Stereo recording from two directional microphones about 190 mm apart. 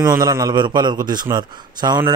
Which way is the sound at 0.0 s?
20° right (ahead or behind).